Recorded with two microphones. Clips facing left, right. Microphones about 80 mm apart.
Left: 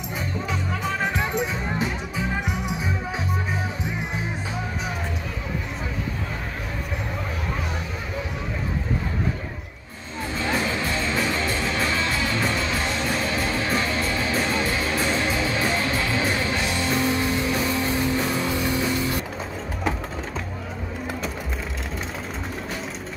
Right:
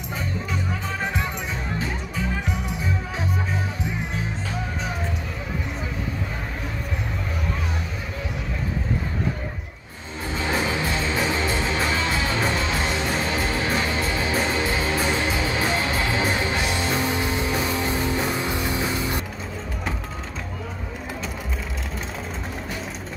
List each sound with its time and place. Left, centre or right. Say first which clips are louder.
1.8 s music: left 2 dB; centre
10.4 s music: right 1 dB; centre